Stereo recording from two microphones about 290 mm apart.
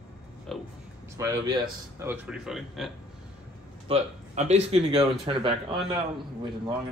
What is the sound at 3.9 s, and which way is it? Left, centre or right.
Speech, right.